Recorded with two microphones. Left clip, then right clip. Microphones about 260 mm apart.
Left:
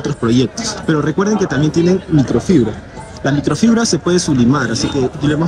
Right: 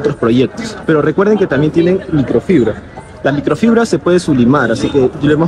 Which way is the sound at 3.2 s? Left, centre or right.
Centre.